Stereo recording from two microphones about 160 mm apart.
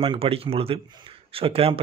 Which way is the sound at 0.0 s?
35° right (ahead or behind).